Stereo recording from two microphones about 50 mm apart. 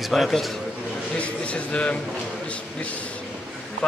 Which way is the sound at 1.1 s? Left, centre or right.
Left.